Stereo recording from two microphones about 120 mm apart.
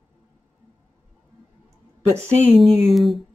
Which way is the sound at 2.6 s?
Centre (ahead or behind).